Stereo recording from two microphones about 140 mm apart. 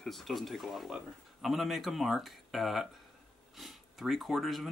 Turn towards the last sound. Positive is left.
turn(degrees=0)  # may be behind; listen again after turning